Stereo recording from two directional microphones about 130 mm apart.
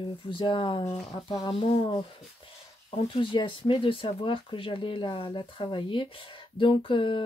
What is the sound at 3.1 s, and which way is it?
Speech, 40° left (ahead or behind).